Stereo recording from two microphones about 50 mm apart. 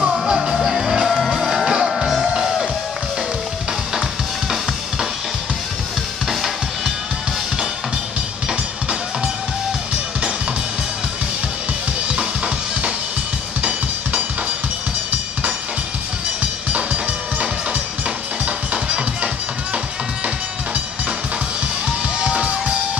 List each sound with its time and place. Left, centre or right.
0.0 s music: centre
1.1 s music: centre
1.5 s music: centre
6.2 s drum kit: centre
13.6 s music: right
16.7 s music: right
22.2 s music: right